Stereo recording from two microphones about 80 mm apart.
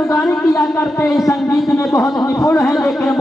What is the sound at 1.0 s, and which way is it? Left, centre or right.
A man's voice, left.